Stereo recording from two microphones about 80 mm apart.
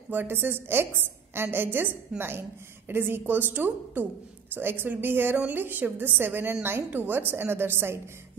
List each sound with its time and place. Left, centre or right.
0.1 s a woman's voice: right